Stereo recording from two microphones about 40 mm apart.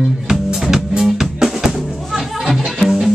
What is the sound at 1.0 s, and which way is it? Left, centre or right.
Music, centre.